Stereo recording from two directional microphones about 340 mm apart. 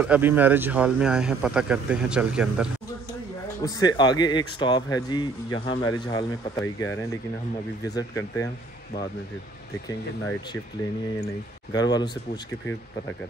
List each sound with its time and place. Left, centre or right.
0.0 s a man's voice: centre
3.6 s speech: centre
11.7 s speech: centre